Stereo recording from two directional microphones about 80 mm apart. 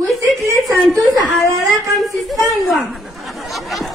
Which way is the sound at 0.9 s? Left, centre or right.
Right.